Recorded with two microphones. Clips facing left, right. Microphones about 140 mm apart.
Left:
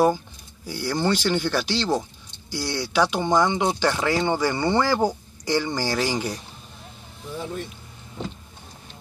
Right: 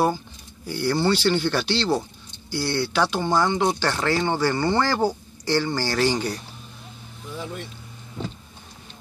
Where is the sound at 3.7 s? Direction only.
5° left (ahead or behind).